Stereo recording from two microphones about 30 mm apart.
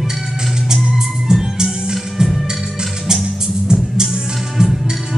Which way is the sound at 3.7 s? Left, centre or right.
Right.